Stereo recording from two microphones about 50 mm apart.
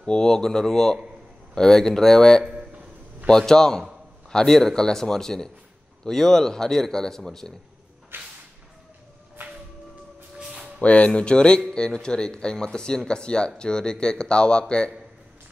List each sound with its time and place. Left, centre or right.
0.0 s speech: centre
2.4 s a sound: centre
3.3 s speech: centre
8.1 s whip: right
10.4 s music: centre
10.8 s speech: left